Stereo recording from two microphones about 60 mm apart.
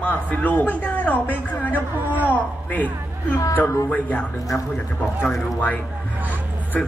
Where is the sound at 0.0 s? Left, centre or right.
Left.